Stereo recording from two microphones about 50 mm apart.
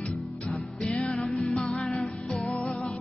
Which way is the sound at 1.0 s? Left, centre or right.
Centre.